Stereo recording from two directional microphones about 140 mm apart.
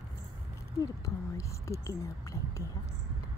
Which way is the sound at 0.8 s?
20° left (ahead or behind).